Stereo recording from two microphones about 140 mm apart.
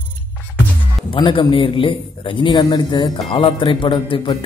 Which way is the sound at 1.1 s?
35° left (ahead or behind).